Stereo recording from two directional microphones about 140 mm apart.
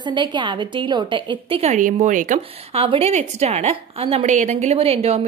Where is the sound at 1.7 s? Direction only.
65° right (ahead or behind).